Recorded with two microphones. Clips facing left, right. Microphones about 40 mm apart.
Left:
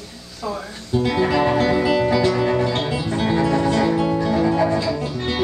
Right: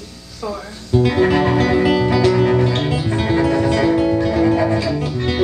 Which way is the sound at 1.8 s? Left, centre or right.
Right.